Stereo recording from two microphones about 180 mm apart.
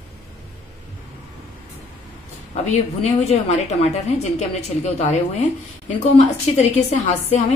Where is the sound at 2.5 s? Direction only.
40° left (ahead or behind).